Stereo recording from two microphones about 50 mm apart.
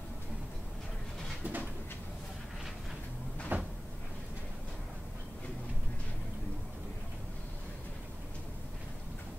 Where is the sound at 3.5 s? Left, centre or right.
Right.